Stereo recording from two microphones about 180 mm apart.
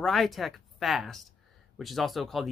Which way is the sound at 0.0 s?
Centre (ahead or behind).